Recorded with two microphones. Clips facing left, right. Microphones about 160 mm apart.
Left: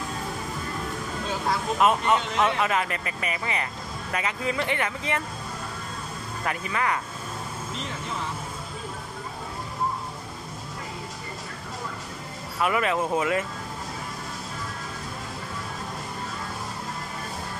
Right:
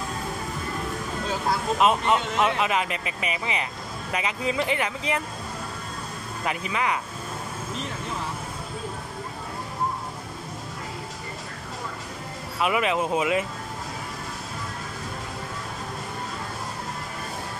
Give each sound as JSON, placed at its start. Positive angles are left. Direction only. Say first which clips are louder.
{"t": 1.8, "sound": "speech", "louder": "even", "side_deg": -20}
{"t": 2.3, "sound": "speech", "louder": "even", "side_deg": -5}
{"t": 2.6, "sound": "speech", "louder": "even", "side_deg": -20}
{"t": 6.4, "sound": "speech", "louder": "right 1 dB", "side_deg": -20}
{"t": 12.5, "sound": "speech", "louder": "right 1 dB", "side_deg": -15}